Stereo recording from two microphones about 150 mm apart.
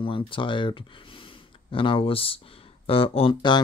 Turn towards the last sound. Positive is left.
turn(degrees=35)  # may be behind; listen again after turning